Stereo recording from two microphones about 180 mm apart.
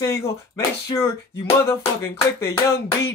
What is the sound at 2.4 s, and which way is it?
Speech, 15° left (ahead or behind).